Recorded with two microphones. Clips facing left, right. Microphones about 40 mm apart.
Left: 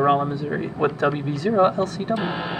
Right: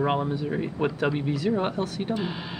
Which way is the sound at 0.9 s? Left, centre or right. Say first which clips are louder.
Left 3 dB; centre.